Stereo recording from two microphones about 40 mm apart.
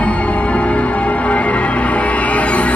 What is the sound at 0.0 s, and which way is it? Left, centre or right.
Music, left.